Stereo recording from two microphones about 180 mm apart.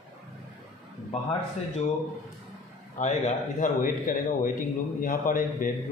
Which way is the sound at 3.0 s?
40° left (ahead or behind).